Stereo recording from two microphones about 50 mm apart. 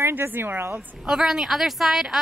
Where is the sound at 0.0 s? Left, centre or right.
Right.